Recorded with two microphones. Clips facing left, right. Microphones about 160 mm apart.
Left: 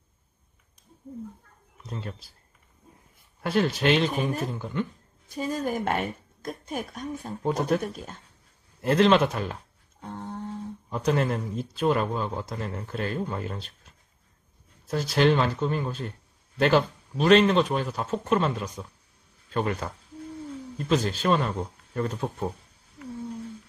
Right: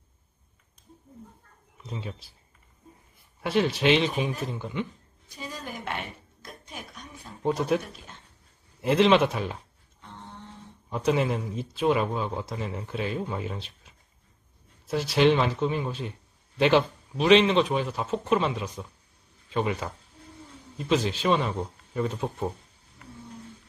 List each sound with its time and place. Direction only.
1.9 s a man's voice: centre (ahead or behind)
3.3 s a man's voice: centre (ahead or behind)
5.3 s speech: 45° left (ahead or behind)
7.4 s a man's voice: centre (ahead or behind)
7.8 s speech: 45° left (ahead or behind)
8.8 s a man's voice: centre (ahead or behind)
10.0 s a sound: 45° left (ahead or behind)
10.9 s a man's voice: centre (ahead or behind)